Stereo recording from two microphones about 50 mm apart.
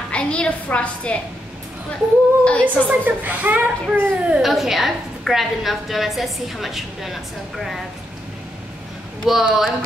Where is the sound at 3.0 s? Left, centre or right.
Right.